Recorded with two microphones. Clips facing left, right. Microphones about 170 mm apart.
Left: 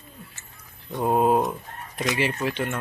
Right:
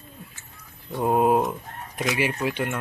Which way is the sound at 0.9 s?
10° right (ahead or behind).